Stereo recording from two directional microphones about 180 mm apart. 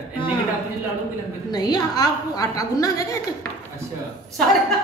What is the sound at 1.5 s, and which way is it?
A woman's voice, 20° left (ahead or behind).